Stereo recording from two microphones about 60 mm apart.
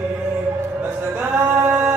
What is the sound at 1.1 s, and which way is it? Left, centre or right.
Music, right.